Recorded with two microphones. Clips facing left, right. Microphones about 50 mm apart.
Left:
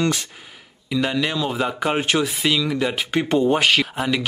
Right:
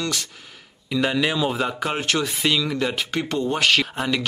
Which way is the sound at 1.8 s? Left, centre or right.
Centre.